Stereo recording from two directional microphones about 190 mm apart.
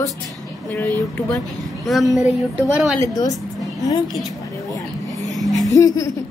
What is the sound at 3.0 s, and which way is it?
Speech, 20° left (ahead or behind).